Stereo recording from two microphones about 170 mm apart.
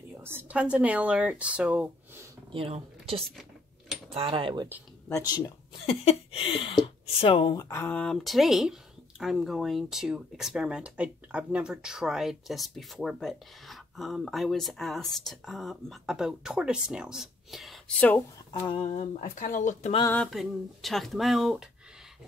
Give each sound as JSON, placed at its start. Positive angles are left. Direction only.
{"t": 0.2, "sound": "speech", "side_deg": -10}
{"t": 2.5, "sound": "speech", "side_deg": -35}
{"t": 5.9, "sound": "speech", "side_deg": 35}
{"t": 7.5, "sound": "speech", "side_deg": 15}
{"t": 8.0, "sound": "speech", "side_deg": 0}
{"t": 18.5, "sound": "a sound", "side_deg": 25}
{"t": 18.9, "sound": "speech", "side_deg": 45}
{"t": 20.1, "sound": "speech", "side_deg": 5}